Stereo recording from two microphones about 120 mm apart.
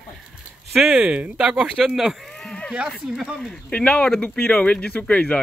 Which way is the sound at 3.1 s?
5° right (ahead or behind).